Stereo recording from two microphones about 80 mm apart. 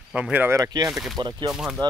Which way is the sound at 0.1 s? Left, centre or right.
Centre.